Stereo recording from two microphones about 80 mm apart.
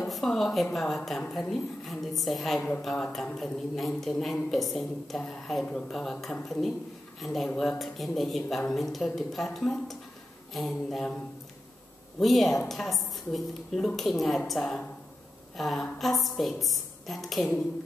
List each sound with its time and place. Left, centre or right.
0.0 s a woman's voice: centre
12.2 s speech: centre